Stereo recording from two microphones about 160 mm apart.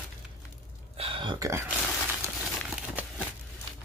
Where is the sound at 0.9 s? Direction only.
35° right (ahead or behind).